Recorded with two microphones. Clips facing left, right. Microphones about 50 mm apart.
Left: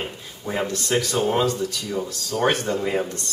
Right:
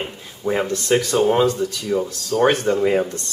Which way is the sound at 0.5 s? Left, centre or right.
Centre.